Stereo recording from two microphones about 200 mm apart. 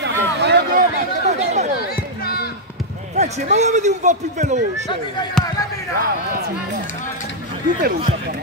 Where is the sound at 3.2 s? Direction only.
35° right (ahead or behind).